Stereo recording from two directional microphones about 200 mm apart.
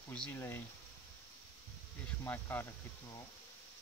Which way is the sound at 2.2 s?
10° left (ahead or behind).